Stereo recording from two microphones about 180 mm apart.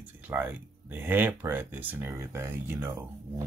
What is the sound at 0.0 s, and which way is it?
Speech, 10° right (ahead or behind).